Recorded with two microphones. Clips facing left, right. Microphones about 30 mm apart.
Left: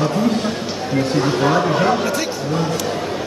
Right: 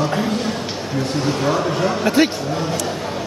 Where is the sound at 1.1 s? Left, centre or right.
Centre.